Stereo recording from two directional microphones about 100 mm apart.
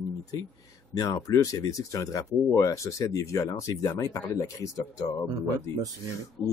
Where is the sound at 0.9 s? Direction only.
35° left (ahead or behind).